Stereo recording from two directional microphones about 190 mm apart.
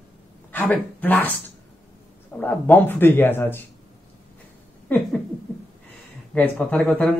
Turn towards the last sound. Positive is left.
turn(degrees=5)  # may be behind; listen again after turning